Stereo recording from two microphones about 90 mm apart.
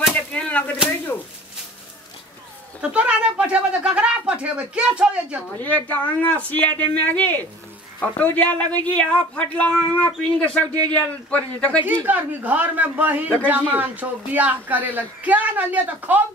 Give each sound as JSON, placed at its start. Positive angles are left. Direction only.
{"t": 0.1, "sound": "a sound", "side_deg": 15}
{"t": 2.8, "sound": "speech", "side_deg": -15}
{"t": 5.6, "sound": "speech", "side_deg": 15}
{"t": 12.1, "sound": "a man's voice", "side_deg": -20}